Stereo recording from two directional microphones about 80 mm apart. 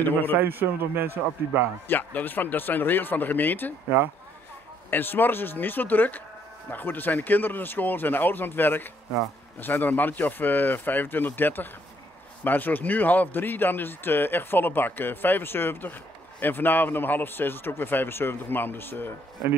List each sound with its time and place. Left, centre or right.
0.0 s a man's voice: left
0.4 s a man's voice: right
1.9 s a man's voice: left
4.9 s a man's voice: left